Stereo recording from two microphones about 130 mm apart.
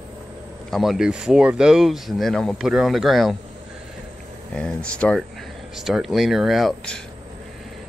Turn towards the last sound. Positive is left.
turn(degrees=5)  # may be behind; listen again after turning